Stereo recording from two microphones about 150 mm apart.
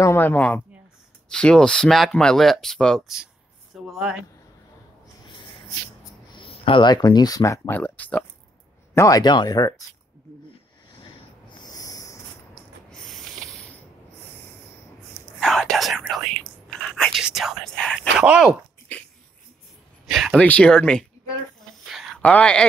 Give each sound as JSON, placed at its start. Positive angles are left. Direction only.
{"t": 0.0, "sound": "a woman's voice", "side_deg": 15}
{"t": 6.3, "sound": "speech", "side_deg": 35}
{"t": 8.9, "sound": "speech", "side_deg": 25}
{"t": 11.4, "sound": "a sound", "side_deg": 25}
{"t": 12.9, "sound": "a sound", "side_deg": 0}
{"t": 15.4, "sound": "whispering", "side_deg": 0}
{"t": 18.2, "sound": "speech", "side_deg": -10}
{"t": 20.1, "sound": "speech", "side_deg": 0}
{"t": 21.8, "sound": "a sound", "side_deg": 0}